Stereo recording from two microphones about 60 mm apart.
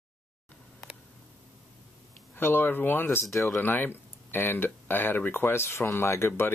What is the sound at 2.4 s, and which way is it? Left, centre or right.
Speech, left.